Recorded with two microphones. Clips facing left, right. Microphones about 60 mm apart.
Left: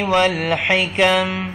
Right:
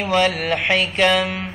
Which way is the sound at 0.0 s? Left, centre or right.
Centre.